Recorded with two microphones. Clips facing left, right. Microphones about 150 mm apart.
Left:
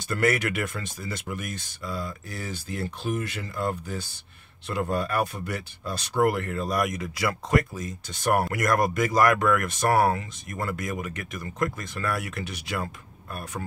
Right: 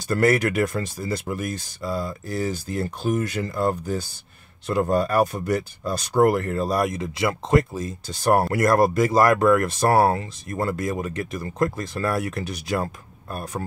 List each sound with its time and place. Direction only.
0.1 s speech: 35° right (ahead or behind)